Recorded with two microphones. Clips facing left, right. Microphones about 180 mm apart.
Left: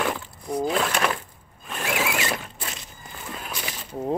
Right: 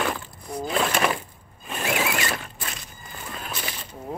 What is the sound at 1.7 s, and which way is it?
Ratchet, 5° right (ahead or behind).